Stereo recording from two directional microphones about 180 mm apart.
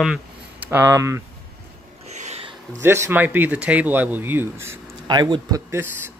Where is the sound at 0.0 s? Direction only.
5° right (ahead or behind).